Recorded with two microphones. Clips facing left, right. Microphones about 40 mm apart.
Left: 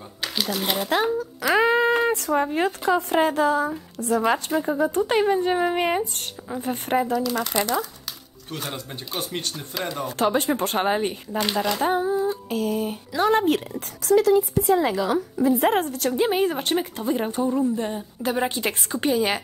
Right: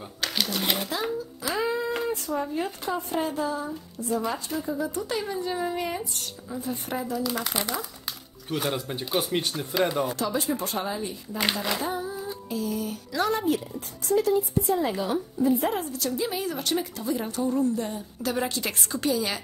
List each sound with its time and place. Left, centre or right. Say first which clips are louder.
0.2 s speech: left 2 dB; centre
1.4 s a sound: left 9 dB; left
2.0 s a woman's voice: left 6 dB; left
4.6 s speech: left 7 dB; left
7.2 s speech: left 5 dB; centre
10.1 s speech: left 6 dB; left
12.0 s female singing: left 10 dB; left
12.4 s a sound: left 5 dB; left
13.3 s speech: left 7 dB; left
13.7 s speech: left 5 dB; left
15.8 s a woman's voice: left 6 dB; left